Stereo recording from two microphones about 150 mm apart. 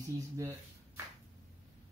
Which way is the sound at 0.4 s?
20° right (ahead or behind).